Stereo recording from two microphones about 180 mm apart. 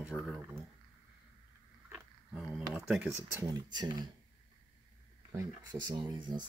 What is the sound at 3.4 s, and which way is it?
Speech, 20° right (ahead or behind).